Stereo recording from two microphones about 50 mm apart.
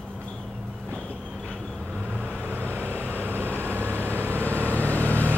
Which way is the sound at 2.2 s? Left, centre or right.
Left.